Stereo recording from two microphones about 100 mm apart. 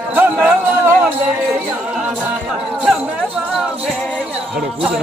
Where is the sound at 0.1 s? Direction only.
20° right (ahead or behind).